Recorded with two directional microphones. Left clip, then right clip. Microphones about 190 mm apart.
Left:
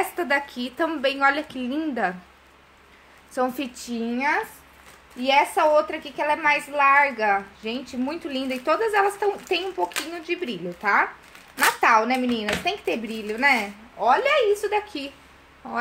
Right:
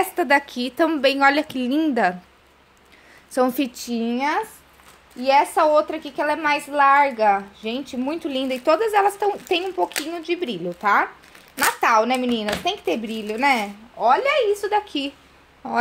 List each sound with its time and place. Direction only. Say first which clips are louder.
0.1 s speech: right 5 dB; 45° right (ahead or behind)
3.3 s a woman's voice: right 5 dB; 45° right (ahead or behind)